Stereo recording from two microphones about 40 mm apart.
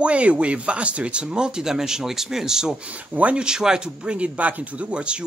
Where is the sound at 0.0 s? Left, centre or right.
Right; by 3.9 s centre.